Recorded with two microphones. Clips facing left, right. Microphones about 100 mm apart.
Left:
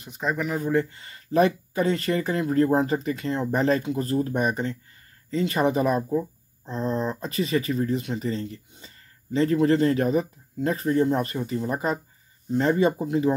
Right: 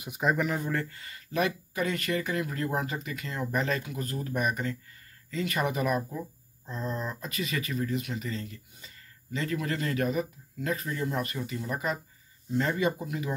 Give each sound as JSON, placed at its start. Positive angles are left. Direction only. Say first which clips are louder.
{"t": 0.0, "sound": "speech", "louder": "even", "side_deg": -5}
{"t": 0.7, "sound": "speech", "louder": "left 8 dB", "side_deg": 20}